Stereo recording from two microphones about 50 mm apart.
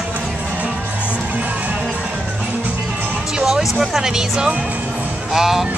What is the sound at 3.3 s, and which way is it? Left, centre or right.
Speech, centre.